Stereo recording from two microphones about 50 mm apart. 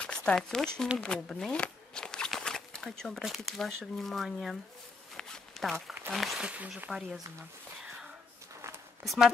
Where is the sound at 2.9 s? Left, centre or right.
Centre.